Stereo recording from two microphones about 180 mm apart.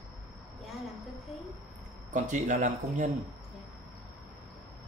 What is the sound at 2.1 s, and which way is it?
Speech, 45° right (ahead or behind).